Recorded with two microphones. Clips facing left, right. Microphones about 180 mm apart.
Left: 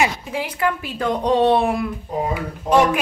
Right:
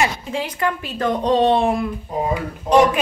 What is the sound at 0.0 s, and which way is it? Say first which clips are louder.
Speech: even; 10° left (ahead or behind).